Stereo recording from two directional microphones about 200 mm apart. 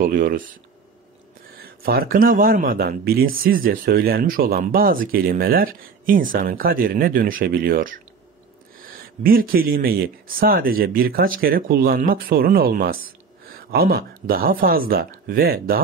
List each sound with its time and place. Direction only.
0.0 s speech: 45° right (ahead or behind)
1.6 s speech: 50° right (ahead or behind)